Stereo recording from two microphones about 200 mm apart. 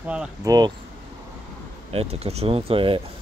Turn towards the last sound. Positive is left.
turn(degrees=-25)  # may be behind; listen again after turning